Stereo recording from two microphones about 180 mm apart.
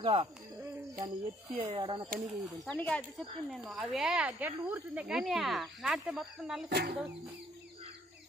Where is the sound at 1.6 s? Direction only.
30° right (ahead or behind).